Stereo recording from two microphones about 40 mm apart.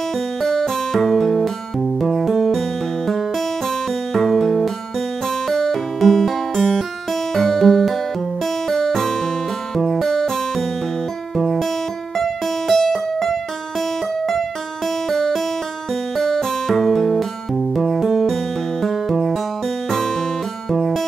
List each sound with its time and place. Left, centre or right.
0.4 s music: centre
0.9 s music: centre
4.1 s music: centre
11.3 s music: centre
12.2 s music: centre
15.0 s music: centre